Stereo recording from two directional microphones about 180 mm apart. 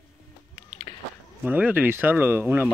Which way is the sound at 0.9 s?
25° left (ahead or behind).